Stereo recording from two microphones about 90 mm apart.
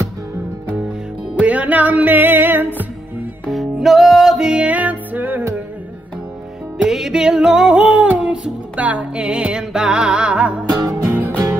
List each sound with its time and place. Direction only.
1.4 s music: 15° right (ahead or behind)
3.8 s music: centre (ahead or behind); by 5.4 s 20° right (ahead or behind)
6.8 s music: 5° right (ahead or behind)
10.9 s music: 25° right (ahead or behind)